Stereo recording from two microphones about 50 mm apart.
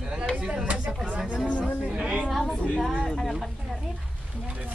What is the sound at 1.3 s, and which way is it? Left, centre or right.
Speech, right.